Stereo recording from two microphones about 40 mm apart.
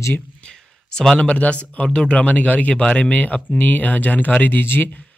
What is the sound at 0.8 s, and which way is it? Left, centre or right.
Speech, centre.